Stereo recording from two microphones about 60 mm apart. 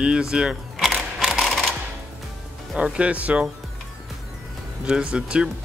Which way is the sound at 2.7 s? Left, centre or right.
Centre.